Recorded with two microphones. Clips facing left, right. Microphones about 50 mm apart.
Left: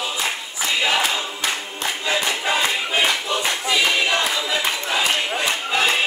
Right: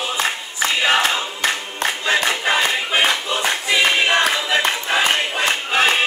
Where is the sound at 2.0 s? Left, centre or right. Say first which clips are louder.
Right 3 dB; right.